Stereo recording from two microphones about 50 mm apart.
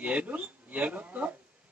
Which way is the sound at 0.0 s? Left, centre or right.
Right.